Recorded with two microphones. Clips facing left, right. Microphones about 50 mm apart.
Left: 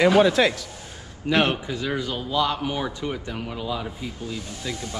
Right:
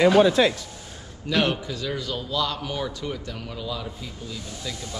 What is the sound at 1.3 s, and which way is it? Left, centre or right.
A man's voice, left.